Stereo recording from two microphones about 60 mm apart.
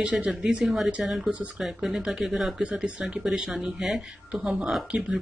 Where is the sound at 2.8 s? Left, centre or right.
Centre.